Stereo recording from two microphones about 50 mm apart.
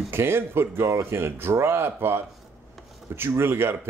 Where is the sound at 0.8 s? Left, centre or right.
Right.